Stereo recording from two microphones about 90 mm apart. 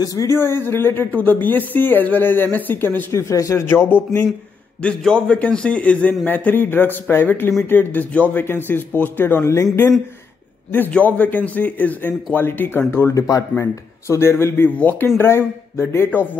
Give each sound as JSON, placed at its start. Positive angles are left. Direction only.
{"t": 0.0, "sound": "speech", "side_deg": 40}
{"t": 0.3, "sound": "speech", "side_deg": 25}
{"t": 3.1, "sound": "speech", "side_deg": 35}
{"t": 4.8, "sound": "speech", "side_deg": 10}
{"t": 10.7, "sound": "speech", "side_deg": 20}